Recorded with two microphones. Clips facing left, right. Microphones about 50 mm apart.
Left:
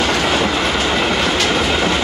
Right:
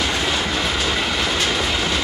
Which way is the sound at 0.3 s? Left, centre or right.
Left.